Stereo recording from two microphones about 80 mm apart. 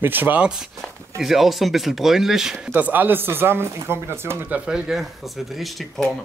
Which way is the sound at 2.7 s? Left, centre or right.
Right.